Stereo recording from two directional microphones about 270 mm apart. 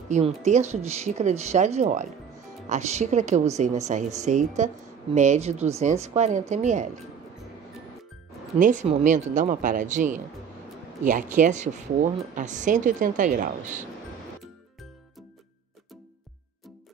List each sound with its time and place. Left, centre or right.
0.1 s speech: right
8.5 s speech: right